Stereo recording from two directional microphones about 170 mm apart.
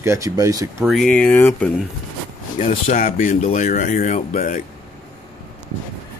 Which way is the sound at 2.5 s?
45° left (ahead or behind).